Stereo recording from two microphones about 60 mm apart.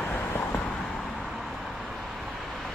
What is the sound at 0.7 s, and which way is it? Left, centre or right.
Vehicle, centre.